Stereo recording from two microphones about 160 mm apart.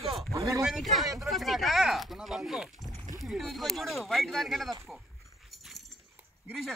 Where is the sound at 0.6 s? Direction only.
Centre (ahead or behind).